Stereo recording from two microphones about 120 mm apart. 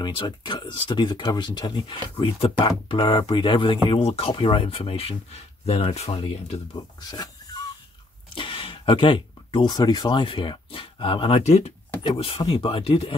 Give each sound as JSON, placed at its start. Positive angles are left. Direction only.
{"t": 0.0, "sound": "speech", "side_deg": 40}
{"t": 6.1, "sound": "speech", "side_deg": 50}
{"t": 6.7, "sound": "speech", "side_deg": 35}
{"t": 8.4, "sound": "speech", "side_deg": 45}
{"t": 12.4, "sound": "speech", "side_deg": 45}